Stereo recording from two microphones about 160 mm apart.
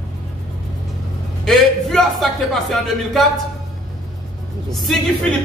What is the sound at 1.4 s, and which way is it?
Speech, centre (ahead or behind).